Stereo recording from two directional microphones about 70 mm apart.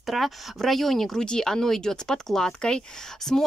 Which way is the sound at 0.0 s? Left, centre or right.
Centre.